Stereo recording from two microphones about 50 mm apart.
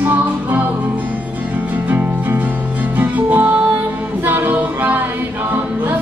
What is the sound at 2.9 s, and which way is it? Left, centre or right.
Music, right.